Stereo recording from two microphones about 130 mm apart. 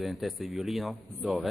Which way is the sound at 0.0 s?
Centre (ahead or behind).